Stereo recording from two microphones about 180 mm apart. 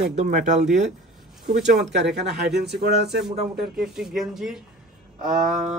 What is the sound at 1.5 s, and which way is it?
Speech, 70° right (ahead or behind).